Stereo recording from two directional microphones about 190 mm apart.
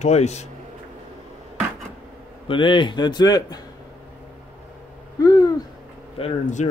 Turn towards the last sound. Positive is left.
turn(degrees=40)  # may be behind; listen again after turning